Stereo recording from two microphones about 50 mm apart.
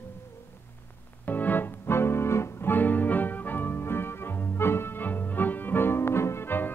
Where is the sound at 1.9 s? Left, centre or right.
Left.